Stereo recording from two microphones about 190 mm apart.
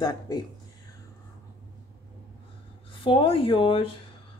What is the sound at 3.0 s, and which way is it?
Speech, 30° left (ahead or behind).